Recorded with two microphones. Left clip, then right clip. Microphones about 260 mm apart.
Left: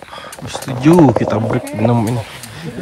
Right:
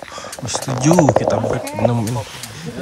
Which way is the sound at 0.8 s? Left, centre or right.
Centre.